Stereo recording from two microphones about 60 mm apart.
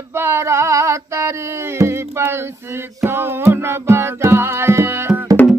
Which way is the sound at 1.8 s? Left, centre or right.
Right.